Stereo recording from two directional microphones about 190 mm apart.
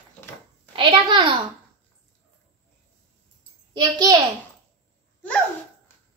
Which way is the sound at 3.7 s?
20° right (ahead or behind).